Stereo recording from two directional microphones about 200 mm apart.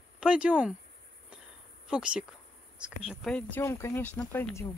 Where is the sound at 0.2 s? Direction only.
5° right (ahead or behind).